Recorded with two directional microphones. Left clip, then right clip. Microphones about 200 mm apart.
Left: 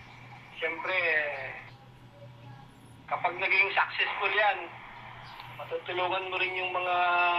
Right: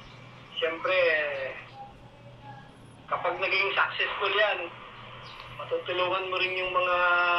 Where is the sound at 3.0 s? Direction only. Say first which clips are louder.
Right 1 dB; 20° left (ahead or behind).